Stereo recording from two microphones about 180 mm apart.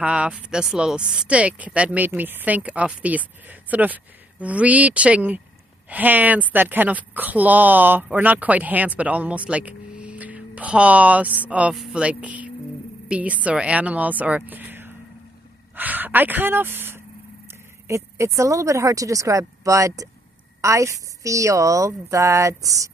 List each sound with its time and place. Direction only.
0.0 s a woman's voice: 5° right (ahead or behind)